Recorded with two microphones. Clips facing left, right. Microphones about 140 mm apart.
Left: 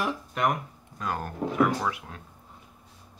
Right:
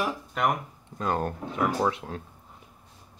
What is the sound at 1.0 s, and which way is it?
Speech, 30° right (ahead or behind).